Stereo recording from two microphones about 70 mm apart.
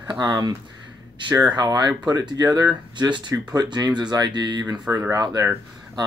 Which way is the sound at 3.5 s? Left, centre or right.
Right.